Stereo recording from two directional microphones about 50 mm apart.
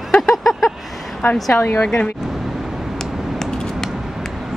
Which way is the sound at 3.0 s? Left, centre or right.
Centre.